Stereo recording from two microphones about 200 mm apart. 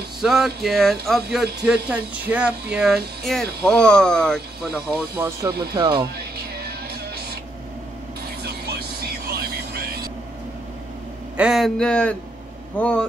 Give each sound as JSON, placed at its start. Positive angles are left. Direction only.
{"t": 0.2, "sound": "speech", "side_deg": 0}
{"t": 4.9, "sound": "speech", "side_deg": -10}
{"t": 5.9, "sound": "music", "side_deg": -50}
{"t": 8.5, "sound": "vehicle", "side_deg": -55}
{"t": 11.3, "sound": "speech", "side_deg": 0}